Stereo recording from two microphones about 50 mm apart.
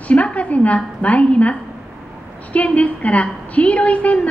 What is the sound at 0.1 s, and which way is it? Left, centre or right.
A woman's voice, left.